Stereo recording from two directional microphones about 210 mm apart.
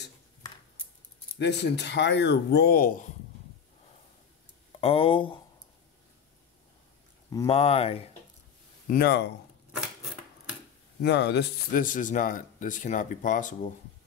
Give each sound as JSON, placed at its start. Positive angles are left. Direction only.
{"t": 1.4, "sound": "speech", "side_deg": 55}
{"t": 4.7, "sound": "speech", "side_deg": 30}
{"t": 7.4, "sound": "speech", "side_deg": 30}
{"t": 8.9, "sound": "speech", "side_deg": 50}
{"t": 9.7, "sound": "a sound", "side_deg": 0}
{"t": 11.0, "sound": "speech", "side_deg": 55}